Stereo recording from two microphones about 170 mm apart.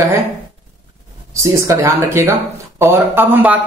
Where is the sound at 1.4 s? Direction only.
15° right (ahead or behind).